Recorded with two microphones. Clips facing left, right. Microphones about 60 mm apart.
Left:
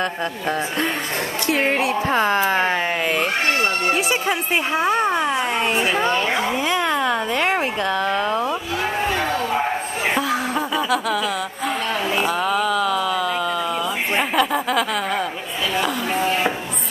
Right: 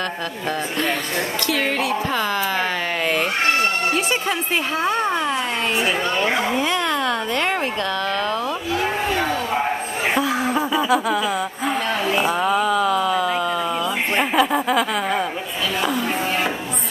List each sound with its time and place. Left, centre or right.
1.5 s speech: left
3.9 s a woman's voice: centre
6.3 s a woman's voice: centre
10.1 s a sound: centre
12.2 s speech: centre